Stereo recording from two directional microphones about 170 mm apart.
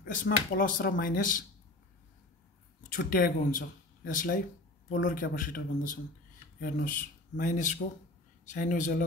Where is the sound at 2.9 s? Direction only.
55° left (ahead or behind).